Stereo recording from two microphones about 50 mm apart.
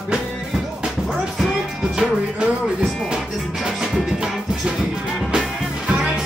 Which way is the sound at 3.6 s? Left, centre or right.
Centre.